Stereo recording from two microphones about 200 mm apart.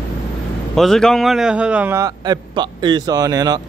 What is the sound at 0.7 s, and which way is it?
A man's voice, centre (ahead or behind).